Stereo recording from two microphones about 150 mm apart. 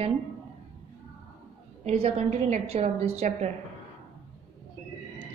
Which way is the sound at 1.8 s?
45° right (ahead or behind).